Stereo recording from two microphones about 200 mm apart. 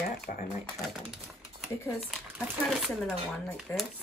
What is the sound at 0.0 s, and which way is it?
Typewriter, 40° left (ahead or behind).